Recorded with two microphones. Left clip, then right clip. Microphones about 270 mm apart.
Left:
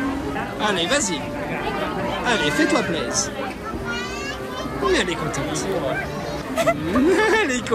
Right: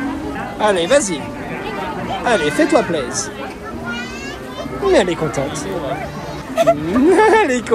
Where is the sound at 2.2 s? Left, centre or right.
Centre.